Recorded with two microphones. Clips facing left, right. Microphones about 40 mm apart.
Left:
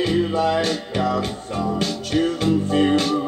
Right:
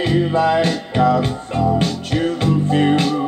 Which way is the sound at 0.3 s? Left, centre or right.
Right.